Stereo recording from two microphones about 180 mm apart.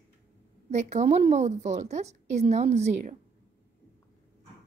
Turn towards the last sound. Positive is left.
turn(degrees=-40)  # may be behind; listen again after turning